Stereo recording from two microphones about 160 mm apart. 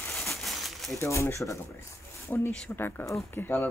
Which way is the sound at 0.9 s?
20° left (ahead or behind).